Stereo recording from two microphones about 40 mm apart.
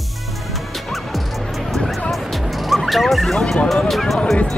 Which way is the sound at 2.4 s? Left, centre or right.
Centre.